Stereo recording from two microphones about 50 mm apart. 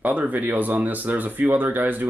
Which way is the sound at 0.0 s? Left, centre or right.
Right.